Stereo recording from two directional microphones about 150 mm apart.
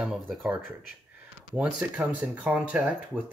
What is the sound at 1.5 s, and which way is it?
Speech, 10° right (ahead or behind).